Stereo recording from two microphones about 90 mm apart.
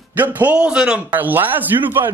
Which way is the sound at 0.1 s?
20° right (ahead or behind).